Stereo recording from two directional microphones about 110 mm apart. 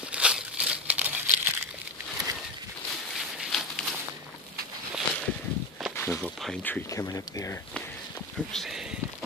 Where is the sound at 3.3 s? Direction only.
5° left (ahead or behind).